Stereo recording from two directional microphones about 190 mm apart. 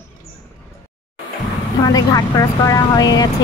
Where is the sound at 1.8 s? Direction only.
20° left (ahead or behind).